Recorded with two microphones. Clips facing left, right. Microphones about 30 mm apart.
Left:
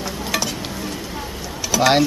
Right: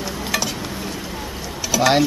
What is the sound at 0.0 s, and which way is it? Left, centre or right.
Stir, centre.